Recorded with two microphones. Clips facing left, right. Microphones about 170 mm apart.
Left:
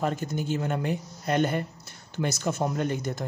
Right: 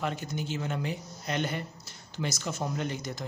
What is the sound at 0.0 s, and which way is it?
Speech, 45° left (ahead or behind).